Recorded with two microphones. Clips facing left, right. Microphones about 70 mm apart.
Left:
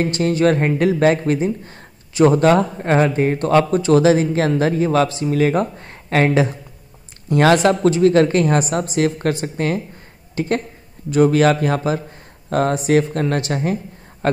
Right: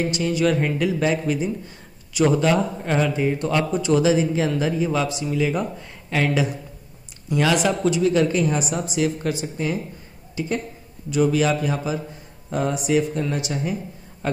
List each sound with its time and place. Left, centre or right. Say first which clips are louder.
0.0 s speech: left 5 dB; left
7.2 s a woman's voice: left 6 dB; left